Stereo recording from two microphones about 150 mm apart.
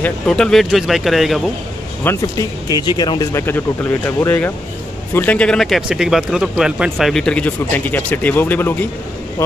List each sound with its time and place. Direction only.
0.0 s speech: 5° left (ahead or behind)
2.0 s speech: 25° left (ahead or behind)